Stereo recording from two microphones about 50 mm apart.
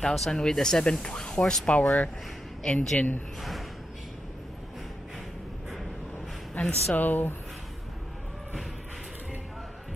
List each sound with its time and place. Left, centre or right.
0.0 s speech: centre
1.7 s speech: left
2.6 s speech: centre
6.6 s speech: left